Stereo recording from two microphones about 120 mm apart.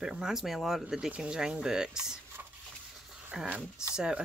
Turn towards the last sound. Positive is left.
turn(degrees=-10)  # may be behind; listen again after turning